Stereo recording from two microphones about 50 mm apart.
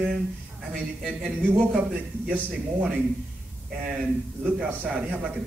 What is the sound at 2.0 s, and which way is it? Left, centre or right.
Speech, right.